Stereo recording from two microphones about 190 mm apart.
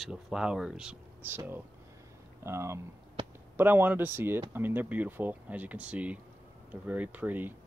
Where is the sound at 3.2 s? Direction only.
25° right (ahead or behind).